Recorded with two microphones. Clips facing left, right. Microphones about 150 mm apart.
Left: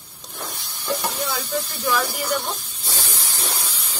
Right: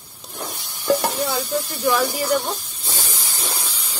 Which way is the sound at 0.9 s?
45° right (ahead or behind).